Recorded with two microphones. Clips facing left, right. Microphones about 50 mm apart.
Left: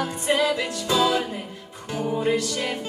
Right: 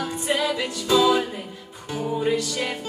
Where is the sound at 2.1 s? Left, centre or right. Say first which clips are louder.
Even; centre.